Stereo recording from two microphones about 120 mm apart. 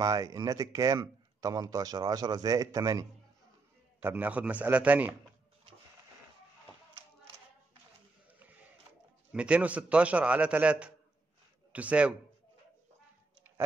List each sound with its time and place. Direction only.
0.0 s speech: 30° right (ahead or behind)
4.0 s a man's voice: 15° right (ahead or behind)
9.3 s a man's voice: 10° right (ahead or behind)